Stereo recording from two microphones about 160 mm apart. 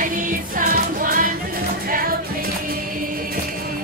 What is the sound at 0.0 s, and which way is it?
Music, 55° right (ahead or behind).